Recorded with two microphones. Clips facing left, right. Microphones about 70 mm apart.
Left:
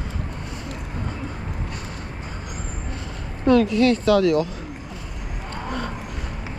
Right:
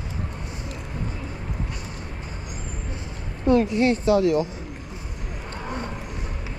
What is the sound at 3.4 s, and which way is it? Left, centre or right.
Speech, left.